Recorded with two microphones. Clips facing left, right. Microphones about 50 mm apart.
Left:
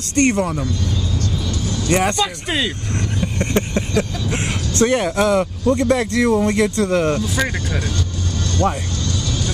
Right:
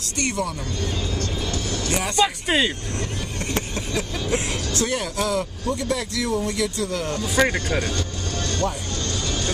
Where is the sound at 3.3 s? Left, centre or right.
Left.